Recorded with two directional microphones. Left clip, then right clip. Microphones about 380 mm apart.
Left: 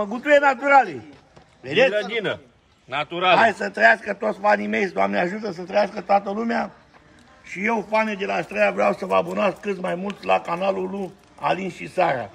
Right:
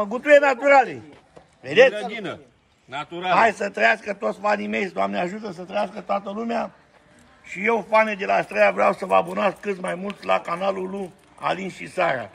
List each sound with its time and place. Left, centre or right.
0.1 s a man's voice: centre
2.0 s a man's voice: centre
3.3 s a man's voice: centre